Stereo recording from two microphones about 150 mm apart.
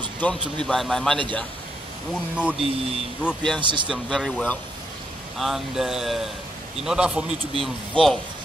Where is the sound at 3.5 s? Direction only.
30° right (ahead or behind).